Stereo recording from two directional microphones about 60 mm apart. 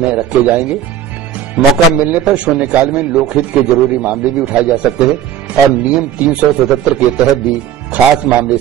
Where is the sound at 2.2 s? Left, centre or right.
Centre.